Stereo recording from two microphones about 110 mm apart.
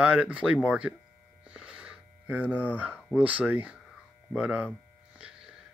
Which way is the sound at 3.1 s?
10° right (ahead or behind).